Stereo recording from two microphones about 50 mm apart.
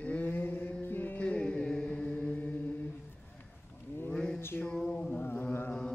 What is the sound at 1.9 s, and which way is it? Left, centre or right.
Chant, left.